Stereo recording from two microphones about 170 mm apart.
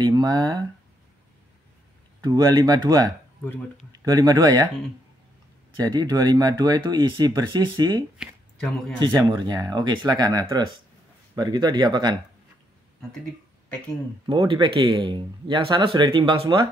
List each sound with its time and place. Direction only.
0.0 s speech: 25° right (ahead or behind)
2.2 s speech: 25° right (ahead or behind)
5.8 s speech: 25° right (ahead or behind)
8.2 s a sound: centre (ahead or behind)
9.0 s speech: 25° right (ahead or behind)
14.2 s speech: 25° right (ahead or behind)